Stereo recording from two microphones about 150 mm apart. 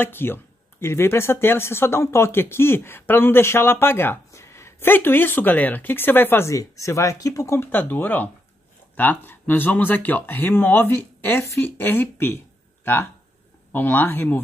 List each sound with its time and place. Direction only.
0.0 s speech: 15° left (ahead or behind)